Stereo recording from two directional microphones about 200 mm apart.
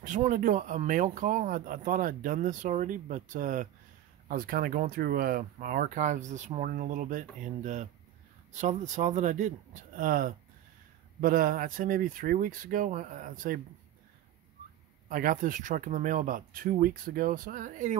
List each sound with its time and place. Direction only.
0.0 s speech: 40° right (ahead or behind)
15.0 s speech: 40° right (ahead or behind)